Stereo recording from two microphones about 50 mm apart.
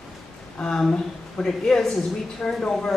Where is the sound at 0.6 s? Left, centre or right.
Centre.